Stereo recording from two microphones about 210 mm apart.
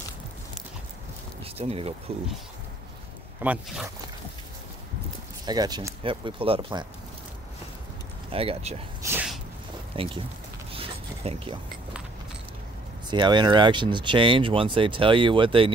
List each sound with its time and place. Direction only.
1.4 s speech: 30° right (ahead or behind)
3.4 s speech: 5° right (ahead or behind)
5.4 s speech: 20° right (ahead or behind)
8.3 s speech: 25° right (ahead or behind)
9.0 s sneeze: 5° right (ahead or behind)
9.9 s speech: 25° right (ahead or behind)
10.7 s a sound: 25° right (ahead or behind)
13.1 s speech: 20° right (ahead or behind)